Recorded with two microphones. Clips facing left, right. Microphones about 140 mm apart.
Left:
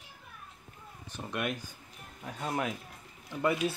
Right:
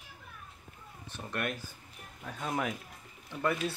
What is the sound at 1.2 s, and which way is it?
Speech, 5° left (ahead or behind).